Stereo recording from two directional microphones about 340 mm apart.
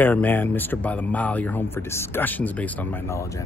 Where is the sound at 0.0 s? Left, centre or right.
Centre.